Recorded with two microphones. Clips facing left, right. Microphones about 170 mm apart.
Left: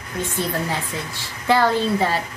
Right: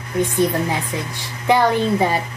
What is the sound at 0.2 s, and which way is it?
Speech, 15° right (ahead or behind).